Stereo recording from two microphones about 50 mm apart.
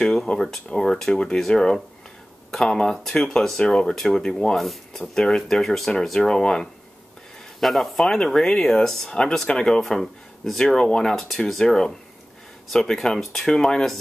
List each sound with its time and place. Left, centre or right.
0.3 s speech: left
4.6 s speech: centre
7.6 s speech: centre